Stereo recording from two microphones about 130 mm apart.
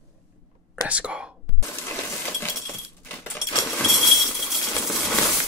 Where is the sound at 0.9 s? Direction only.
10° right (ahead or behind).